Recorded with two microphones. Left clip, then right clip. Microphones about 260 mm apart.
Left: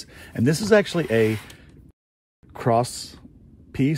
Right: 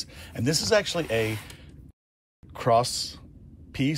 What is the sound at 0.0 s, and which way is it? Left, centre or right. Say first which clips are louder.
Speech: left 6 dB; left.